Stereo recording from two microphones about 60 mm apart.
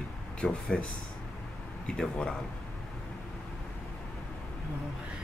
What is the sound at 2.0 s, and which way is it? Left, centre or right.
Speech, centre.